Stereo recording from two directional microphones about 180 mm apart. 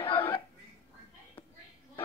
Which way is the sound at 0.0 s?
30° left (ahead or behind).